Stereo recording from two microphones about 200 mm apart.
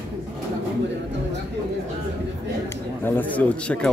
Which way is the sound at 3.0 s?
10° left (ahead or behind).